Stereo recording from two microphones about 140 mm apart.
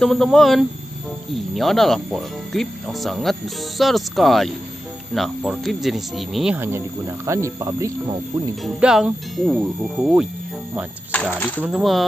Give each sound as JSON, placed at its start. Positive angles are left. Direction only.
{"t": 0.0, "sound": "speech", "side_deg": 5}
{"t": 6.5, "sound": "speech", "side_deg": -15}
{"t": 8.6, "sound": "speech", "side_deg": -5}
{"t": 11.1, "sound": "speech", "side_deg": 10}
{"t": 11.6, "sound": "speech", "side_deg": 0}